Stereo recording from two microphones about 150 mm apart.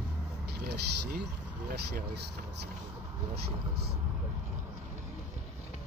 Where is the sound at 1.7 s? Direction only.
80° right.